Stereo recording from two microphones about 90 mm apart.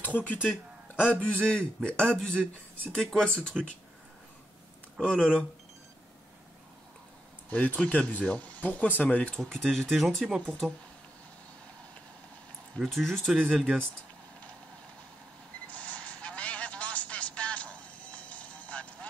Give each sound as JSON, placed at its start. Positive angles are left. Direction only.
{"t": 0.0, "sound": "speech", "side_deg": 20}
{"t": 1.4, "sound": "speech", "side_deg": 10}
{"t": 3.6, "sound": "speech", "side_deg": -5}
{"t": 5.0, "sound": "speech", "side_deg": 10}
{"t": 7.4, "sound": "speech", "side_deg": 15}
{"t": 12.7, "sound": "speech", "side_deg": 0}
{"t": 15.7, "sound": "vehicle", "side_deg": 15}